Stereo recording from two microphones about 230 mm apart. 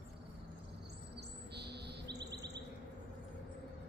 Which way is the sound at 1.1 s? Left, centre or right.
Right.